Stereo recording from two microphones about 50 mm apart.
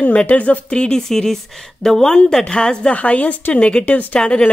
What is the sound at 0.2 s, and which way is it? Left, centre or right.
Speech, left.